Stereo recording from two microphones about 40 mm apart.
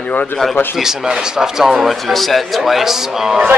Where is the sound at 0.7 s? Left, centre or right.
Centre.